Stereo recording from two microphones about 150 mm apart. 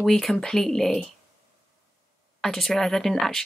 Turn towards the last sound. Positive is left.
turn(degrees=0)  # may be behind; listen again after turning